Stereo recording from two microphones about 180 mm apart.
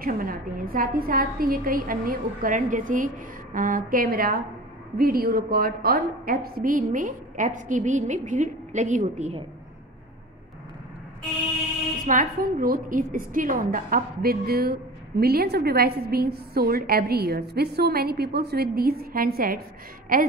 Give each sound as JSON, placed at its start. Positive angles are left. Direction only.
{"t": 0.0, "sound": "a woman's voice", "side_deg": -50}
{"t": 12.1, "sound": "a woman's voice", "side_deg": -50}